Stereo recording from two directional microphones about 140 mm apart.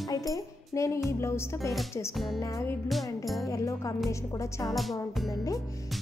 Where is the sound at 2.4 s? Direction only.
20° left (ahead or behind).